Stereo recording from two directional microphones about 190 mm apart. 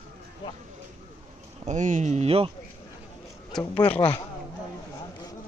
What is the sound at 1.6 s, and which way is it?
Speech, 40° right (ahead or behind).